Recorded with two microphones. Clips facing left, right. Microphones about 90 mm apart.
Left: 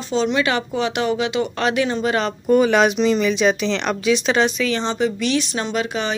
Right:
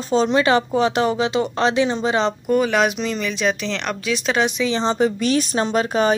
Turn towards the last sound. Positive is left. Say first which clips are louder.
# right 5 dB
turn(degrees=-40)  # may be behind; listen again after turning